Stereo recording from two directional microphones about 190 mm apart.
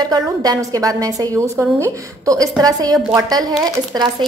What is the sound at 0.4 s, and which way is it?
A woman's voice, 20° right (ahead or behind).